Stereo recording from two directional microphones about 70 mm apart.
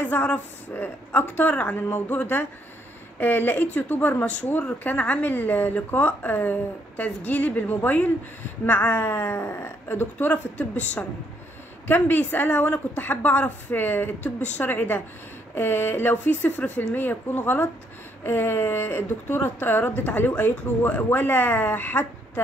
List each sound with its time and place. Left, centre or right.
0.0 s speech: left
10.1 s speech: left